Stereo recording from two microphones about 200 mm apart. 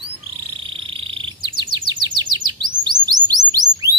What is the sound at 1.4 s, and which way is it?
Chirp, 25° right (ahead or behind).